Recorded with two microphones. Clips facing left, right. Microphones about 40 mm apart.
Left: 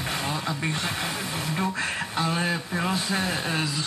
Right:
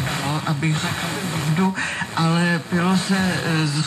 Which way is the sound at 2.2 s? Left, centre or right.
Centre.